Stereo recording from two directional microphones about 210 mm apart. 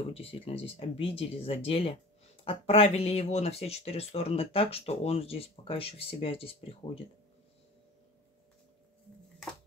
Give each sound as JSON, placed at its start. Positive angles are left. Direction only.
{"t": 0.1, "sound": "speech", "side_deg": 30}